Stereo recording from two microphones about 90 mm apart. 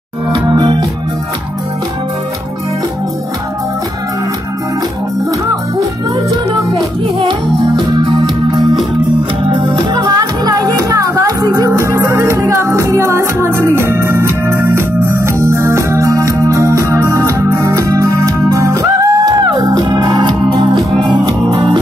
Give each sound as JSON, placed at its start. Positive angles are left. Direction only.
{"t": 0.3, "sound": "music", "side_deg": -55}
{"t": 7.7, "sound": "music", "side_deg": -60}
{"t": 9.5, "sound": "music", "side_deg": -60}